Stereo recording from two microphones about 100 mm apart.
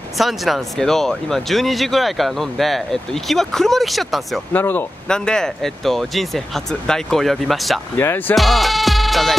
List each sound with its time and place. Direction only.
0.2 s speech: centre (ahead or behind)
4.5 s speech: 20° left (ahead or behind)
5.0 s speech: 5° left (ahead or behind)
8.0 s speech: 20° left (ahead or behind)
8.4 s music: centre (ahead or behind)